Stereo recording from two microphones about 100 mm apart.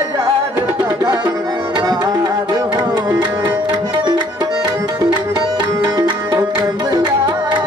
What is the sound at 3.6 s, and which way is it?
Tabla, 45° right (ahead or behind).